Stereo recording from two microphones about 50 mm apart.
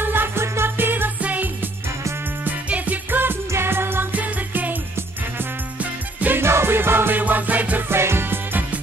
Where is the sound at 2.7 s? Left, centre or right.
Right.